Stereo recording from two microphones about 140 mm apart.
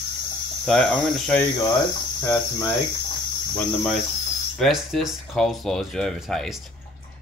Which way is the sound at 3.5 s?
5° left (ahead or behind).